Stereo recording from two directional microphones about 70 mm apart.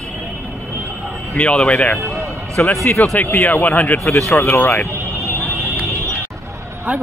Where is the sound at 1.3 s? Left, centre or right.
Centre.